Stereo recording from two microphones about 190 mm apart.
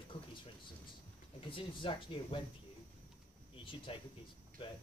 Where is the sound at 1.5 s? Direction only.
25° left (ahead or behind).